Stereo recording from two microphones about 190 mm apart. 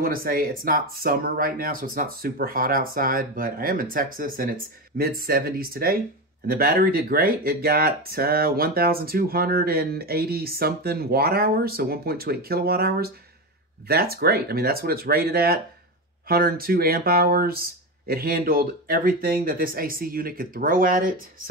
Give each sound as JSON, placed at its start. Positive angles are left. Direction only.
{"t": 0.0, "sound": "speech", "side_deg": -50}